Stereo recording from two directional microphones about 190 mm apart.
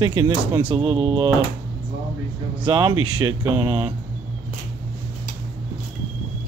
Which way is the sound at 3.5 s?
10° right (ahead or behind).